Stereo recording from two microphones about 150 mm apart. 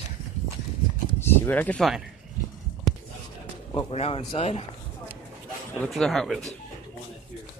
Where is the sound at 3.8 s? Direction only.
45° left (ahead or behind).